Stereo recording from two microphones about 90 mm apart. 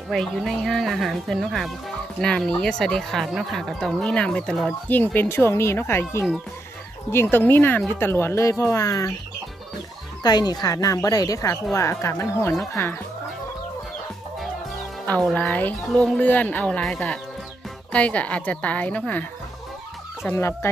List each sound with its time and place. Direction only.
0.1 s speech: centre (ahead or behind); by 9.1 s 30° left (ahead or behind)
10.2 s speech: 50° left (ahead or behind); by 12.9 s 30° left (ahead or behind)
15.3 s speech: 15° left (ahead or behind)
15.9 s speech: 5° left (ahead or behind)
16.2 s speech: 20° left (ahead or behind)
20.3 s speech: 30° left (ahead or behind)